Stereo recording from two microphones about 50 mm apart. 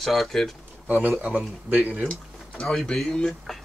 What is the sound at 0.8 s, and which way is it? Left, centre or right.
Speech, right.